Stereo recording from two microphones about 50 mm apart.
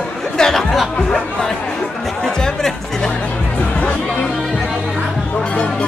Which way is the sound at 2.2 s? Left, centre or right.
Centre.